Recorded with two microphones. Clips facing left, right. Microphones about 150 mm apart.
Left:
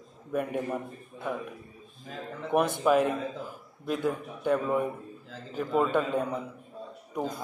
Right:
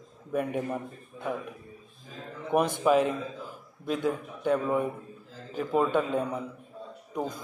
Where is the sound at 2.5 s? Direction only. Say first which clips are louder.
Even; 5° left (ahead or behind).